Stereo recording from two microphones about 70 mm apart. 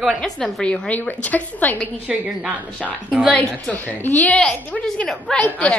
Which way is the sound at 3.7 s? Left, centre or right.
Left.